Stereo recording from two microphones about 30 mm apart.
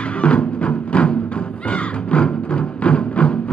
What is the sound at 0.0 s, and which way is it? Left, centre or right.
Music, left.